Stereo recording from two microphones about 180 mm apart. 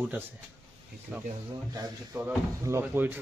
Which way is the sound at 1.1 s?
5° right (ahead or behind).